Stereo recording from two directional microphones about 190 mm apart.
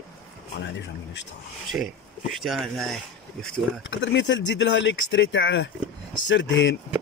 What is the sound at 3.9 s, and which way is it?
Speech, 70° left (ahead or behind).